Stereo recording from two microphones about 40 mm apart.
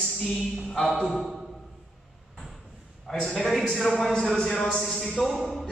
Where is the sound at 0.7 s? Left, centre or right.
Centre.